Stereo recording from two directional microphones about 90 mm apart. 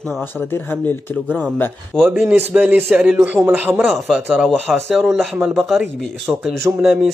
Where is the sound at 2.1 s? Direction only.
25° right (ahead or behind).